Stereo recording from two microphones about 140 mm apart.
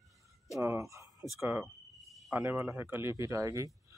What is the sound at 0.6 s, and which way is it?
Speech, 20° right (ahead or behind).